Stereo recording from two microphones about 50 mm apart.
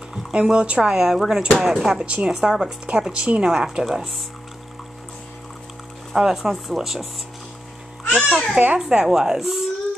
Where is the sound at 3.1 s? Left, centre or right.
Right.